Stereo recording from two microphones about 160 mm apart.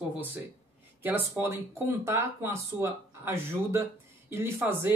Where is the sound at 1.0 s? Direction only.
10° right (ahead or behind).